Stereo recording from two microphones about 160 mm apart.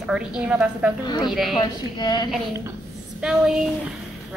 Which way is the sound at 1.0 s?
25° left (ahead or behind).